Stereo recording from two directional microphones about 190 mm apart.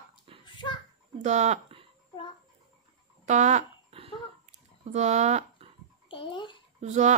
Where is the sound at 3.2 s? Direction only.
40° right (ahead or behind).